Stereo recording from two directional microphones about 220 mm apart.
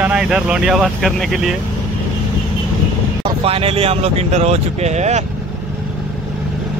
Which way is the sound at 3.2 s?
25° right (ahead or behind).